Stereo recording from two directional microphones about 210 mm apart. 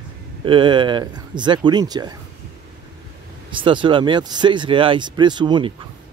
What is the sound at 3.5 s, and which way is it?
Speech, 25° right (ahead or behind).